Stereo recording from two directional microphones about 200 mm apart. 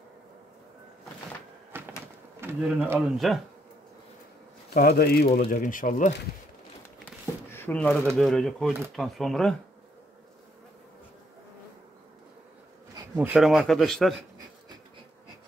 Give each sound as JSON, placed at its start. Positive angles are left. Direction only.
{"t": 1.7, "sound": "a sound", "side_deg": -10}
{"t": 2.4, "sound": "speech", "side_deg": -10}
{"t": 3.2, "sound": "speech", "side_deg": 0}
{"t": 4.6, "sound": "speech", "side_deg": 50}
{"t": 7.5, "sound": "speech", "side_deg": 10}
{"t": 13.1, "sound": "speech", "side_deg": -5}